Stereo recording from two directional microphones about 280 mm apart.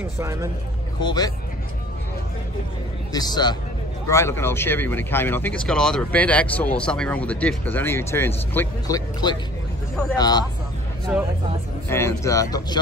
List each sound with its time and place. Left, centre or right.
0.2 s speech: centre
1.0 s speech: centre
3.1 s speech: centre
11.1 s speech: centre
11.9 s speech: centre